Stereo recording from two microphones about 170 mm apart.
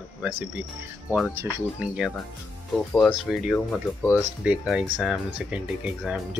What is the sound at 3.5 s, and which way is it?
Speech, 10° left (ahead or behind).